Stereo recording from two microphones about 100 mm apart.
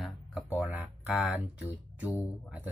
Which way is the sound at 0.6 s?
20° right (ahead or behind).